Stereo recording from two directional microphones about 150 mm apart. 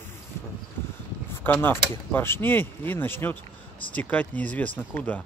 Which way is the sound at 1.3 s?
15° left (ahead or behind).